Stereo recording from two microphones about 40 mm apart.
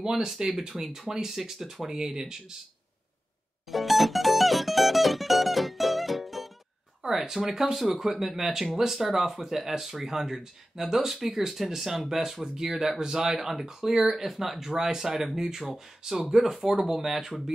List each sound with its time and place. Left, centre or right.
0.0 s speech: centre
3.7 s mandolin: centre
7.0 s speech: centre